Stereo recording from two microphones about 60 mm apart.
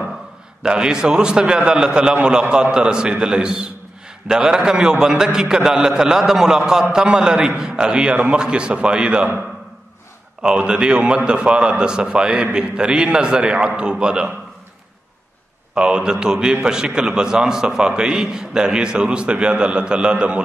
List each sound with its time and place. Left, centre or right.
0.6 s a man's voice: centre
10.4 s a man's voice: centre
15.7 s a man's voice: centre